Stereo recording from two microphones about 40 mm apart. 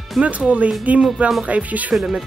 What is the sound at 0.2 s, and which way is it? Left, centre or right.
Speech, right.